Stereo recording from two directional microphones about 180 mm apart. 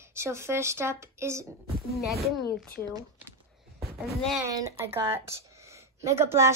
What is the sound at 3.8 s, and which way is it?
Speech, centre (ahead or behind).